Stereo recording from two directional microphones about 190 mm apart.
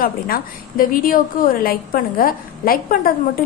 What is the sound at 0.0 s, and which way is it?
A woman's voice, 50° left (ahead or behind).